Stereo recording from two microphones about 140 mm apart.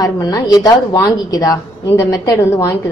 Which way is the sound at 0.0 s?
25° left (ahead or behind).